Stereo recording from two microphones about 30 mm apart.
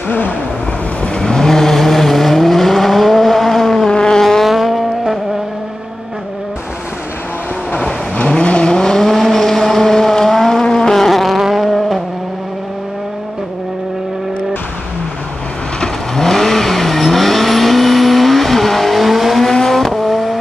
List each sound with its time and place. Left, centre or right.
1.0 s vehicle: left
1.5 s vehicle: centre
3.9 s vehicle: left
4.2 s vehicle: centre
4.5 s vehicle: centre
8.4 s vehicle: left
8.6 s vehicle: centre
11.1 s vehicle: centre
16.2 s vehicle: centre
19.5 s vehicle: centre
19.9 s vehicle: centre